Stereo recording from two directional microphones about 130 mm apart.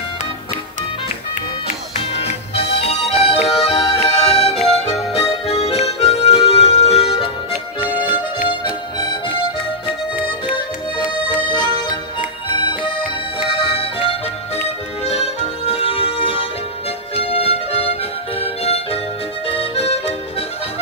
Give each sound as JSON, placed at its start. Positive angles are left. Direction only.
{"t": 2.1, "sound": "music", "side_deg": 50}
{"t": 8.5, "sound": "music", "side_deg": 35}
{"t": 10.5, "sound": "accordion", "side_deg": 35}
{"t": 13.6, "sound": "music", "side_deg": 45}
{"t": 18.6, "sound": "harmonica", "side_deg": 50}
{"t": 19.4, "sound": "accordion", "side_deg": 45}